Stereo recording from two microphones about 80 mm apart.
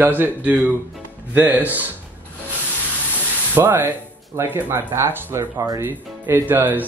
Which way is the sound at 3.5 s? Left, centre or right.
Right.